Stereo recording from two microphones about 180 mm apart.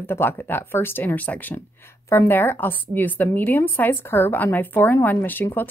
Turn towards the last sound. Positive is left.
turn(degrees=10)  # may be behind; listen again after turning